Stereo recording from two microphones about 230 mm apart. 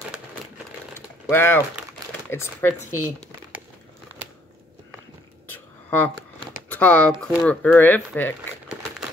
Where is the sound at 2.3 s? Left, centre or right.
Centre.